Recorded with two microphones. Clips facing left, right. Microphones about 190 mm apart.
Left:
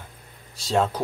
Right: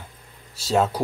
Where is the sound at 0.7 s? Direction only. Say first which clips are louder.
Right 2 dB; 5° right (ahead or behind).